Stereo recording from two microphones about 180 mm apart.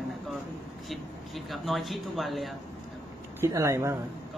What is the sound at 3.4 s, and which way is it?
Speech, 15° right (ahead or behind).